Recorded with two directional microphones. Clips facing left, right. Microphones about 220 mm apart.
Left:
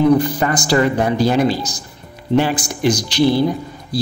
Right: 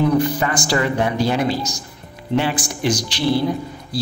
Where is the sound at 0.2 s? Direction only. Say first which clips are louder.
Left 1 dB; 35° left (ahead or behind).